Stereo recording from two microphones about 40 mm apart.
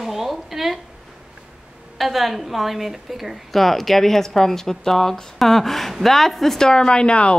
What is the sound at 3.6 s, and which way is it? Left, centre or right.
A woman's voice, centre.